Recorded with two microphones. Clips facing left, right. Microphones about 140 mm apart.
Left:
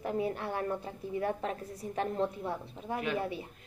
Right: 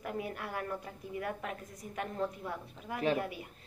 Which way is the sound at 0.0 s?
30° left (ahead or behind).